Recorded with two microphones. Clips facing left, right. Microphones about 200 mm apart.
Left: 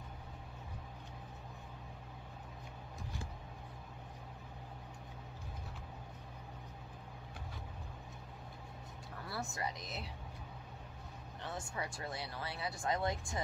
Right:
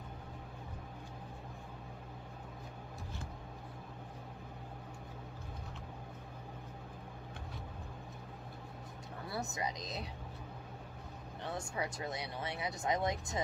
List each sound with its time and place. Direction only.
9.3 s speech: 20° right (ahead or behind)
11.7 s speech: 20° right (ahead or behind)